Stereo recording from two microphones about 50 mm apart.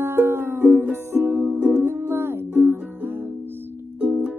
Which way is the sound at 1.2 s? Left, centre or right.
Right.